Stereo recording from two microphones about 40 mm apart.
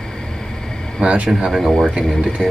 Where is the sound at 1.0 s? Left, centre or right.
Right.